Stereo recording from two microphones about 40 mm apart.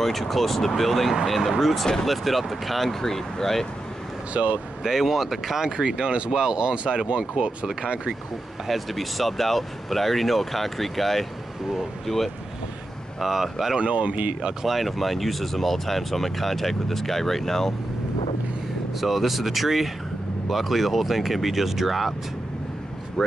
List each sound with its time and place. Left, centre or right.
0.0 s speech: centre
4.3 s speech: right
4.8 s speech: centre
5.7 s speech: centre
8.6 s speech: centre
13.2 s speech: centre
13.7 s speech: right
14.6 s speech: centre
18.9 s speech: centre